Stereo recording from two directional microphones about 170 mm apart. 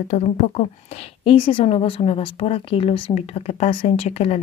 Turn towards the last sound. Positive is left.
turn(degrees=40)  # may be behind; listen again after turning